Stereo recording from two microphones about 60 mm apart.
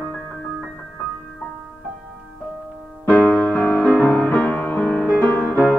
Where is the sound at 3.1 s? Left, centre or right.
Left.